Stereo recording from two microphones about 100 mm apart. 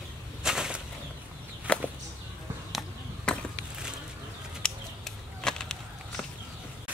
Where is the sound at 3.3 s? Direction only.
5° left (ahead or behind).